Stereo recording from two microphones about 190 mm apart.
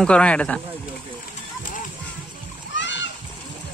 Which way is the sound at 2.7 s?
70° left (ahead or behind).